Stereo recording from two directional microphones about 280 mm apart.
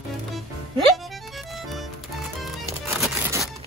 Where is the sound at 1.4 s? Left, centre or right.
Centre.